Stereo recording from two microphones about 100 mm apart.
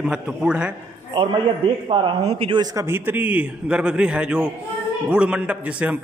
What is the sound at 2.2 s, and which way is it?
Speech, 80° right.